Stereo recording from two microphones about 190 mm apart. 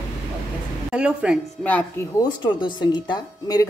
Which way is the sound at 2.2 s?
25° left (ahead or behind).